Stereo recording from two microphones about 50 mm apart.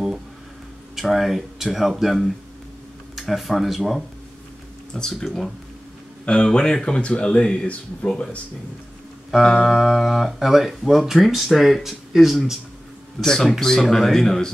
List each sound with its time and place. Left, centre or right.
0.9 s speech: centre
4.9 s speech: centre
6.2 s speech: centre
9.4 s speech: centre
13.2 s speech: centre